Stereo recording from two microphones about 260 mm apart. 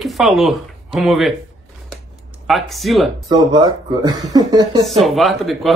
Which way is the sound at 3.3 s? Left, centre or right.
Centre.